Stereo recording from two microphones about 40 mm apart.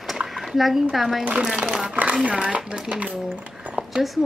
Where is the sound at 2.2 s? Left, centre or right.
Right.